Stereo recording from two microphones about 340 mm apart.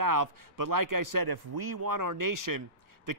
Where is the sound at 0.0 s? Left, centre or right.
Right.